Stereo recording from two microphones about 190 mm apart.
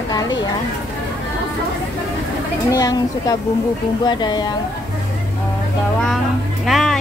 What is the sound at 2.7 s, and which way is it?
A woman's voice, 20° left (ahead or behind).